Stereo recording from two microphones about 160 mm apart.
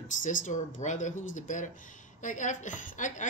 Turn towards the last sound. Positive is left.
turn(degrees=50)  # may be behind; listen again after turning